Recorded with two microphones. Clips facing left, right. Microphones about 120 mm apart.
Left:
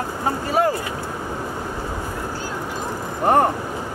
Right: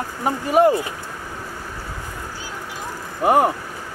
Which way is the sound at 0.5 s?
15° right (ahead or behind).